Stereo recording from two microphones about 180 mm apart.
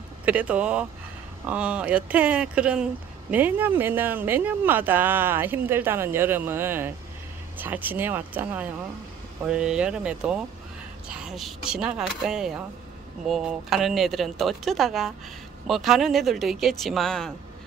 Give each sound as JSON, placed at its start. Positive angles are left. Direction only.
{"t": 0.2, "sound": "speech", "side_deg": -10}